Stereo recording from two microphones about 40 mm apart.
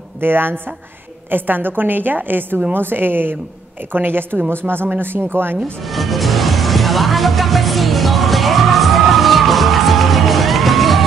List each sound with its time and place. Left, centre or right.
0.2 s a woman's voice: right
4.6 s speech: right
5.0 s a woman's voice: right
5.9 s music: centre